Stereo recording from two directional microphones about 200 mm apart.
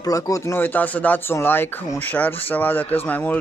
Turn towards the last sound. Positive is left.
turn(degrees=10)  # may be behind; listen again after turning